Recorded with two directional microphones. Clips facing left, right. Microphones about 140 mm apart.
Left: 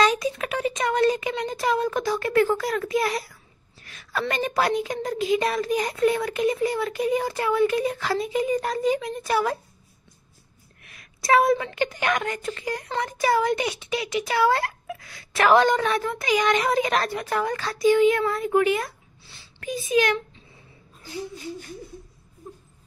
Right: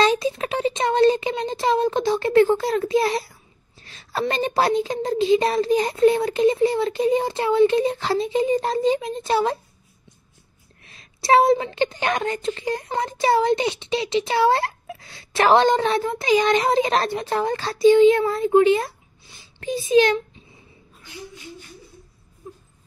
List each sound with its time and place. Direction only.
0.0 s a woman's voice: 25° right (ahead or behind)
10.8 s a woman's voice: 25° right (ahead or behind)
19.2 s a sound: 15° right (ahead or behind)
19.6 s a woman's voice: 30° right (ahead or behind)
21.0 s a child's voice: 40° left (ahead or behind)